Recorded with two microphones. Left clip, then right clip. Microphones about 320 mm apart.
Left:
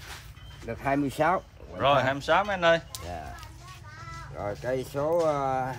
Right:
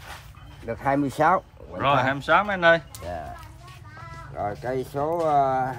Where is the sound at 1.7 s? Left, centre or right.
Centre.